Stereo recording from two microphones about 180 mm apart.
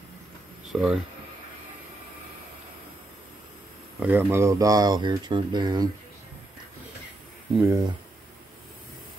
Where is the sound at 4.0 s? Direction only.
10° right (ahead or behind).